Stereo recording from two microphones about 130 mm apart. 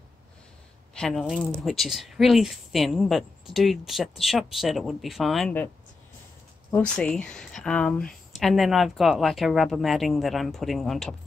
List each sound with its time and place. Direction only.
0.9 s speech: 5° left (ahead or behind)
6.7 s speech: 10° left (ahead or behind)